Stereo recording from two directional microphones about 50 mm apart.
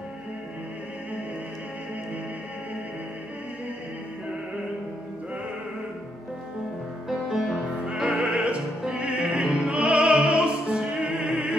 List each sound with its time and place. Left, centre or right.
7.1 s music: centre
7.9 s opera: right